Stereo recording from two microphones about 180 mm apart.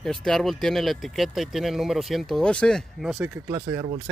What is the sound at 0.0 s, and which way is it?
Speech, centre (ahead or behind).